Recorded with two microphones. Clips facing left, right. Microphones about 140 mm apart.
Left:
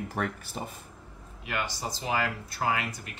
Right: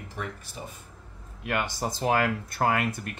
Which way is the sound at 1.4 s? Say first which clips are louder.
Right 4 dB; 55° right (ahead or behind).